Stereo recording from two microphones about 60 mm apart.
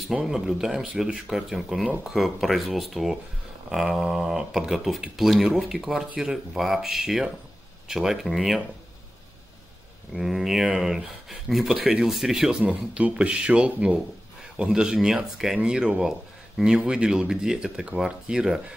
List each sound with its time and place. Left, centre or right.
0.1 s speech: centre
10.1 s speech: centre
12.6 s speech: right